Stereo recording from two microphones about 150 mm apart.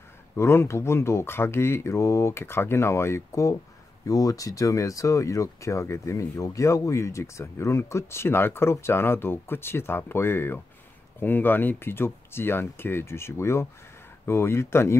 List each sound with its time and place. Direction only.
0.4 s speech: 15° left (ahead or behind)